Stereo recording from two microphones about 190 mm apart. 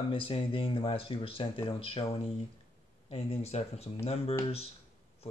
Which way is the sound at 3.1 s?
30° left (ahead or behind).